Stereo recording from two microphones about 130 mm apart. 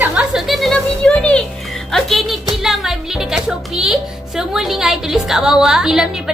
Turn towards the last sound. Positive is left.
turn(degrees=-5)  # may be behind; listen again after turning